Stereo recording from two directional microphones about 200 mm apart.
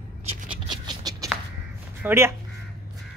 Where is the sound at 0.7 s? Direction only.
20° right (ahead or behind).